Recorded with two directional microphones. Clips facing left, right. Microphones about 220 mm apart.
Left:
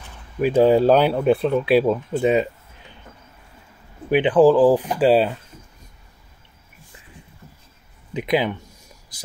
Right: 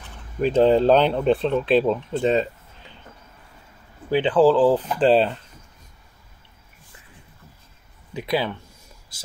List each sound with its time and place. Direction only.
0.4 s speech: 10° left (ahead or behind)
4.1 s speech: 15° left (ahead or behind)
8.1 s speech: 20° left (ahead or behind)